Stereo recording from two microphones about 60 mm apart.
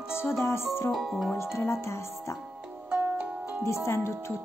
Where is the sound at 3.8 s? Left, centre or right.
Left.